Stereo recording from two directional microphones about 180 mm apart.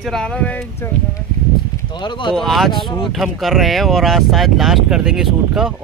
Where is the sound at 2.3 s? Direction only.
Centre (ahead or behind).